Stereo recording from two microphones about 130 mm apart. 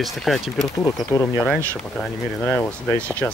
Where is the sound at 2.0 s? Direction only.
10° left (ahead or behind).